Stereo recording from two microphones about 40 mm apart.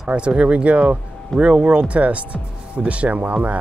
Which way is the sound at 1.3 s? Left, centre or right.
Centre.